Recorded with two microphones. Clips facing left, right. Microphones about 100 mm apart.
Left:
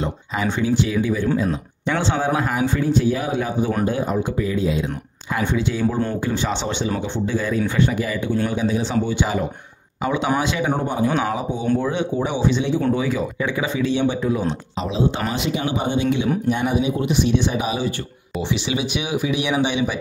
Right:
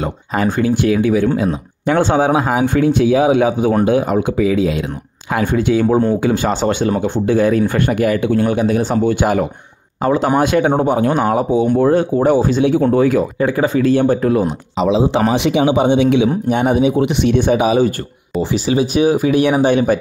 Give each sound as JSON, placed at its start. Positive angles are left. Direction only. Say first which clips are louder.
{"t": 0.3, "sound": "speech", "louder": "right 6 dB", "side_deg": -55}
{"t": 5.3, "sound": "speech", "louder": "right 7 dB", "side_deg": -55}
{"t": 7.0, "sound": "speech", "louder": "right 9 dB", "side_deg": -60}
{"t": 10.0, "sound": "speech", "louder": "right 6 dB", "side_deg": -40}
{"t": 10.4, "sound": "speech", "louder": "right 9 dB", "side_deg": -55}
{"t": 10.8, "sound": "speech", "louder": "right 6 dB", "side_deg": -65}
{"t": 11.8, "sound": "speech", "louder": "right 9 dB", "side_deg": -45}
{"t": 13.5, "sound": "speech", "louder": "right 7 dB", "side_deg": -45}
{"t": 14.8, "sound": "speech", "louder": "right 9 dB", "side_deg": -90}
{"t": 15.3, "sound": "speech", "louder": "right 9 dB", "side_deg": -80}
{"t": 16.4, "sound": "speech", "louder": "right 6 dB", "side_deg": -55}
{"t": 18.4, "sound": "speech", "louder": "right 7 dB", "side_deg": -40}